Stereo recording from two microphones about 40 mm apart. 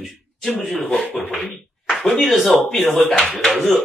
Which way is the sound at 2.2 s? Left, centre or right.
Centre.